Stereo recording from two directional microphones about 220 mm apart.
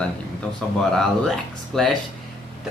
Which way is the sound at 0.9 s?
Centre (ahead or behind).